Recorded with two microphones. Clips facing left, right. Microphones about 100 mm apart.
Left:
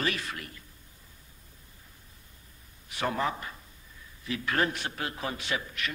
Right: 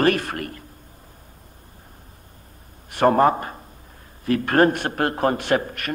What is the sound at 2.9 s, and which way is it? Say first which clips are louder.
A man's voice: right 14 dB; 55° right (ahead or behind).